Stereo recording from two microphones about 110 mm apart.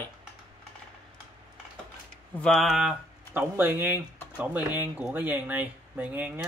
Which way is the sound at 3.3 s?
20° right (ahead or behind).